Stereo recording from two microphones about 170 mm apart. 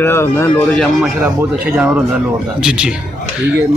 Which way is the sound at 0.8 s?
Centre (ahead or behind).